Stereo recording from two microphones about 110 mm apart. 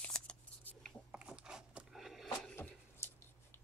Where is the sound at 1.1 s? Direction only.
10° right (ahead or behind).